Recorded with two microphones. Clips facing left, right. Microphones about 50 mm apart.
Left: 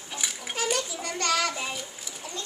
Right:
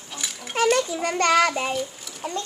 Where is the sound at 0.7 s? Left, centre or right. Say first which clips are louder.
Right 8 dB; right.